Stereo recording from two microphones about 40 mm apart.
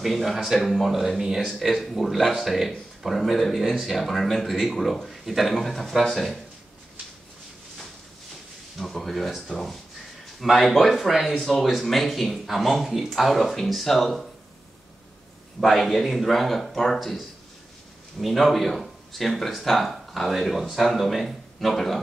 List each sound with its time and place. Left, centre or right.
0.0 s speech: centre
8.7 s speech: centre
15.6 s speech: centre
18.2 s speech: centre